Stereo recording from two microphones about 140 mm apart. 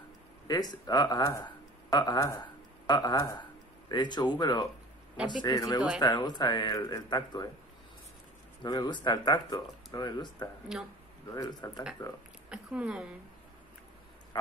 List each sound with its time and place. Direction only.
0.5 s speech: 30° left (ahead or behind)
8.6 s speech: 30° left (ahead or behind)
12.4 s a woman's voice: 5° right (ahead or behind)